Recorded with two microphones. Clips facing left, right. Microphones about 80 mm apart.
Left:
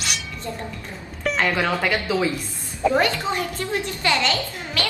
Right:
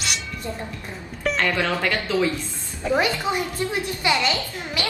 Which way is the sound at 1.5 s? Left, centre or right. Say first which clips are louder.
Left 1 dB; centre.